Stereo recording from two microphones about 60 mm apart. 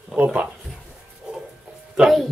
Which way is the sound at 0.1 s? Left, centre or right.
Right.